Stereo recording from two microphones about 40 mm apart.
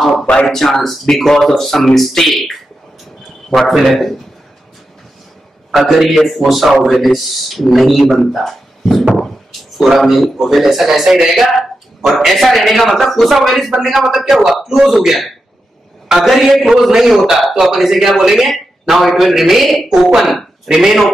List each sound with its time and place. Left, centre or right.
0.0 s a sound: centre
0.5 s a man's voice: centre
5.7 s a man's voice: centre
8.2 s a sound: centre
9.8 s a man's voice: centre
16.8 s a man's voice: centre